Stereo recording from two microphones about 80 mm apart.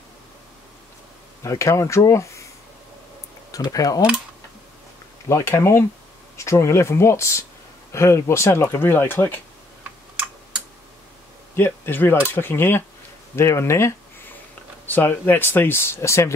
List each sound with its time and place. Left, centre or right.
1.4 s speech: left
3.7 s speech: left
5.3 s speech: left
11.5 s speech: left